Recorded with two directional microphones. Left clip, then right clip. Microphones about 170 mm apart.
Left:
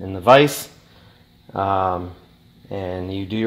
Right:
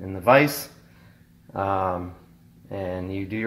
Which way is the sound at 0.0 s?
50° left (ahead or behind).